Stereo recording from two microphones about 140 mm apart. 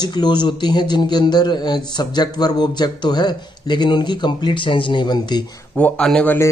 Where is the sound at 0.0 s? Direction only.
30° left (ahead or behind).